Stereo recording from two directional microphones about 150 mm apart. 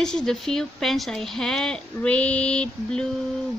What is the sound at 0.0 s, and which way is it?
Speech, 5° left (ahead or behind).